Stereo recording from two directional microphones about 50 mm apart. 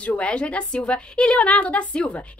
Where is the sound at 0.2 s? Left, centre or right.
Left.